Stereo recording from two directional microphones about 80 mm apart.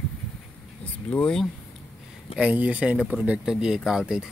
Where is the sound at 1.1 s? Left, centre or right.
Centre.